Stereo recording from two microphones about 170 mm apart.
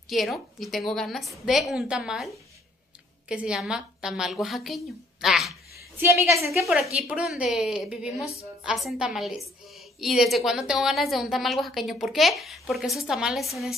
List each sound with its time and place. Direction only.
0.1 s a woman's voice: centre (ahead or behind)
5.9 s a woman's voice: 15° right (ahead or behind)
6.6 s a woman's voice: centre (ahead or behind)